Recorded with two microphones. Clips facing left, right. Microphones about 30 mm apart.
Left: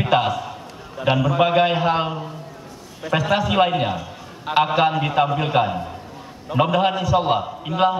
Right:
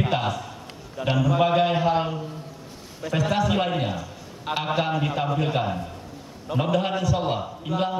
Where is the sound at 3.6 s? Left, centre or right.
Left.